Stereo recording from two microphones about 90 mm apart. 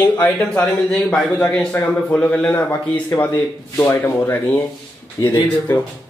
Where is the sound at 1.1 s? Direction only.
10° left (ahead or behind).